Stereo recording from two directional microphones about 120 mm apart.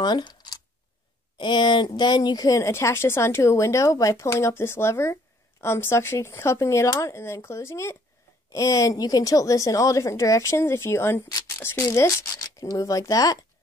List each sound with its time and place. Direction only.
0.0 s a woman's voice: 35° left (ahead or behind)